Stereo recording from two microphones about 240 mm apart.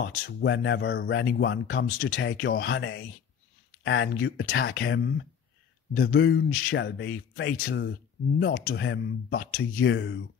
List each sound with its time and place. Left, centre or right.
0.0 s speech: left
2.0 s speech: left